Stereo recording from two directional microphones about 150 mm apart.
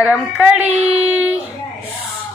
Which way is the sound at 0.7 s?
45° right (ahead or behind).